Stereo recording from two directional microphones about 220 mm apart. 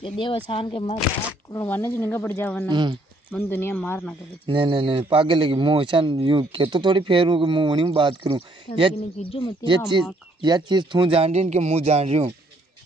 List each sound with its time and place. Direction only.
0.0 s speech: 25° left (ahead or behind)
1.5 s speech: 10° left (ahead or behind)
2.7 s a man's voice: 20° right (ahead or behind)
3.3 s speech: 10° left (ahead or behind)
4.5 s a man's voice: 20° right (ahead or behind)
8.9 s speech: 25° left (ahead or behind)
9.9 s a man's voice: 20° right (ahead or behind)